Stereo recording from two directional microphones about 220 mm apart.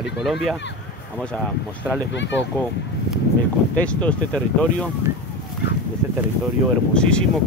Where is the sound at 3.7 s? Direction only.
5° left (ahead or behind).